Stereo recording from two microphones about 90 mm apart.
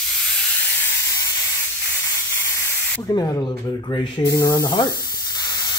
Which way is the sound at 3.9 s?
60° left (ahead or behind).